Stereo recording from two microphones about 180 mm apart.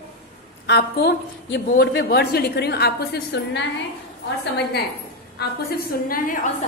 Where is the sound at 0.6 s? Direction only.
65° left (ahead or behind).